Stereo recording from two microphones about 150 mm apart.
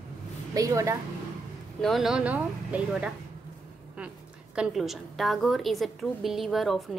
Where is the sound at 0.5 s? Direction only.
20° right (ahead or behind).